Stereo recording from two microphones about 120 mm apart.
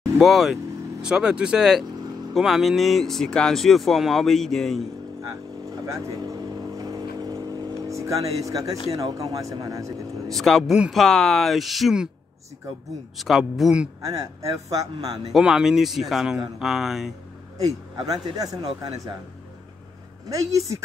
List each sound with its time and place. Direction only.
0.2 s speech: centre (ahead or behind)
5.9 s vehicle: 30° right (ahead or behind)
8.9 s speech: 30° right (ahead or behind)
10.3 s speech: centre (ahead or behind)
13.2 s speech: centre (ahead or behind)
14.0 s speech: 30° right (ahead or behind)
15.3 s speech: 5° right (ahead or behind)
17.9 s speech: 35° right (ahead or behind)